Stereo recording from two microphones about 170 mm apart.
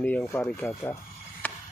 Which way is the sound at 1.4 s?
10° left (ahead or behind).